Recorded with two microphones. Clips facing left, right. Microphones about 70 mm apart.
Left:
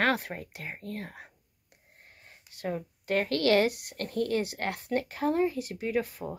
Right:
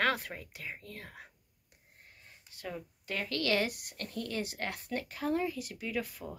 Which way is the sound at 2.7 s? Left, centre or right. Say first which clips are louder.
Left 10 dB; left.